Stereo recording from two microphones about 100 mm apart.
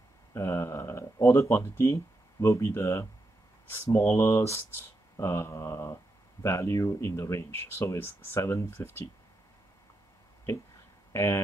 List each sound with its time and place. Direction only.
0.3 s speech: 25° left (ahead or behind)
11.1 s speech: 30° left (ahead or behind)